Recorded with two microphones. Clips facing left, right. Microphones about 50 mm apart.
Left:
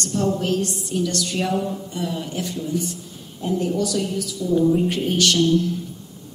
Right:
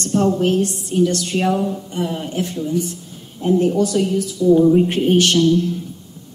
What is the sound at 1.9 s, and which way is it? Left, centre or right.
A woman's voice, right.